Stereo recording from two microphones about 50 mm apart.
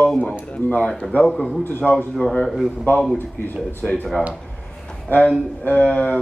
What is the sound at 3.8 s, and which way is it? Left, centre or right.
Speech, centre.